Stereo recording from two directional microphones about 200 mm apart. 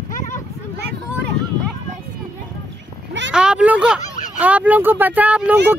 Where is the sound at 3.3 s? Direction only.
5° right (ahead or behind).